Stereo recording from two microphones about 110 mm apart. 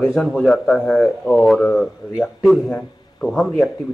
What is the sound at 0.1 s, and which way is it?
A man's voice, centre (ahead or behind).